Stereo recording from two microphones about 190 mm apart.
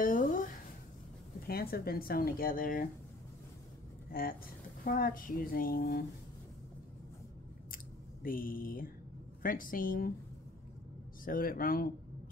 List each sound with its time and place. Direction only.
0.0 s a sound: 45° left (ahead or behind)
1.5 s speech: 50° left (ahead or behind)
4.1 s speech: 50° left (ahead or behind)
7.7 s clicking: 50° left (ahead or behind)
9.4 s speech: 45° left (ahead or behind)
11.2 s speech: 50° left (ahead or behind)